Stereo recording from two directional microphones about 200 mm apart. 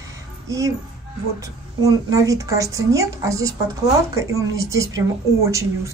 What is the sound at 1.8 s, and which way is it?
Speech, 15° right (ahead or behind).